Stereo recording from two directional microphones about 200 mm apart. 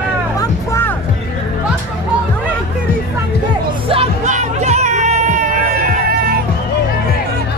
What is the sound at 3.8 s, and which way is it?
Music, 35° right (ahead or behind).